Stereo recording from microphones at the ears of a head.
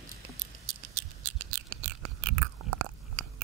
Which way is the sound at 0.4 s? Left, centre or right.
Right.